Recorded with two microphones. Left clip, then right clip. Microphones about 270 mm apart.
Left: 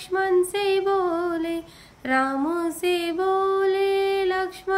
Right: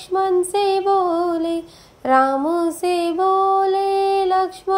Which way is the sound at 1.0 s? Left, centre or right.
Centre.